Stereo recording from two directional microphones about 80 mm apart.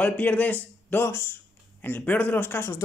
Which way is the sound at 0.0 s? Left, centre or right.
Centre.